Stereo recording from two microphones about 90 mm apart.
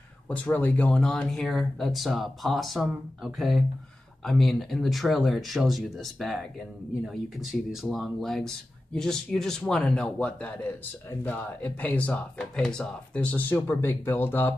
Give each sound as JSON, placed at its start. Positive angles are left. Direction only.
{"t": 0.3, "sound": "speech", "side_deg": 15}